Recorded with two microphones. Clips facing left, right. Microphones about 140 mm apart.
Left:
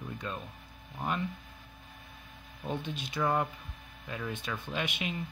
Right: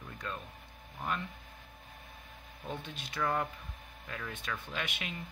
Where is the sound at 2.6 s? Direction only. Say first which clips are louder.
Left 6 dB; 30° left (ahead or behind).